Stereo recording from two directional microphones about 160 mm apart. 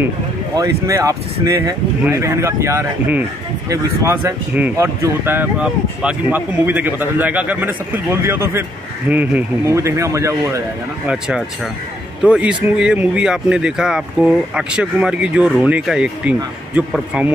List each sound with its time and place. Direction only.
0.6 s a man's voice: 20° right (ahead or behind)
11.1 s speech: 5° right (ahead or behind)